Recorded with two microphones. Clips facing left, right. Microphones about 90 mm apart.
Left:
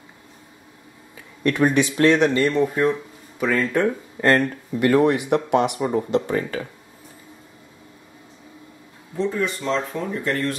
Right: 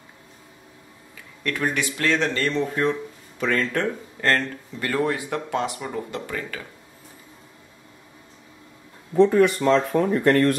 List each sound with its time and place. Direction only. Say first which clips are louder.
1.4 s speech: left 7 dB; 20° left (ahead or behind)
9.2 s speech: right 7 dB; 60° right (ahead or behind)